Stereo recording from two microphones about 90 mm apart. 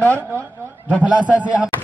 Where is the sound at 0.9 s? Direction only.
15° right (ahead or behind).